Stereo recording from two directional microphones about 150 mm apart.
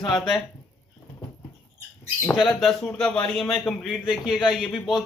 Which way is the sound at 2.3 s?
Centre (ahead or behind).